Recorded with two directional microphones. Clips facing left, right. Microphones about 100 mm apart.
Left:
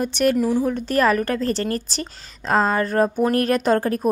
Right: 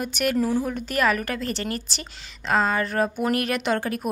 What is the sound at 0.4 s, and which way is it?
A woman's voice, 20° left (ahead or behind).